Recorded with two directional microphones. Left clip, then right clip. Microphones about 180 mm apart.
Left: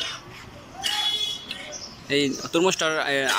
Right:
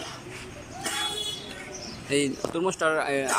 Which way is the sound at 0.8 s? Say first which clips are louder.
Left 5 dB; 15° right (ahead or behind).